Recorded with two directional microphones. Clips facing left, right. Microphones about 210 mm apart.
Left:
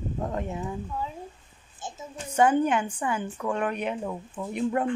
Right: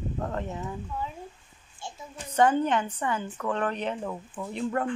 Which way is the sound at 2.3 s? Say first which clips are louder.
Left 1 dB; 10° left (ahead or behind).